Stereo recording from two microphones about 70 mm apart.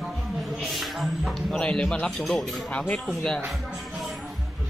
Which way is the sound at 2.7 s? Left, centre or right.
Left.